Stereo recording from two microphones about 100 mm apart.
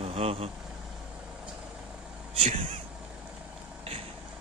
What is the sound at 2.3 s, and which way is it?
Speech, 70° right (ahead or behind).